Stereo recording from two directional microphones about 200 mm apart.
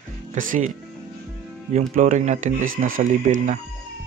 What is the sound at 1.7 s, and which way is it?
Speech, 40° right (ahead or behind).